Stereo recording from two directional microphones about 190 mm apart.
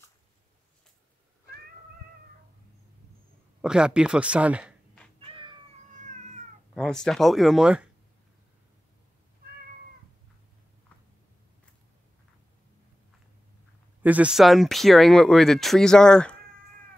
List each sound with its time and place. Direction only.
3.6 s speech: 5° right (ahead or behind)
5.9 s cat: 40° right (ahead or behind)
6.7 s speech: 5° left (ahead or behind)
14.0 s speech: 5° right (ahead or behind)